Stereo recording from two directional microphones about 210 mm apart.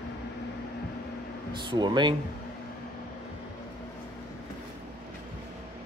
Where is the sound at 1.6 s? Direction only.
20° right (ahead or behind).